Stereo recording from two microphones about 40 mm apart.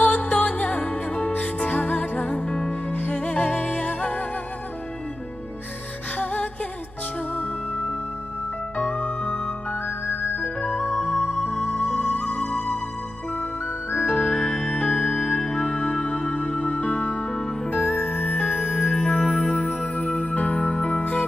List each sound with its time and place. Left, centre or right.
0.0 s music: left
6.1 s music: left
8.8 s music: left
9.8 s music: left
10.9 s music: centre
11.2 s music: left
14.0 s music: left
18.7 s music: left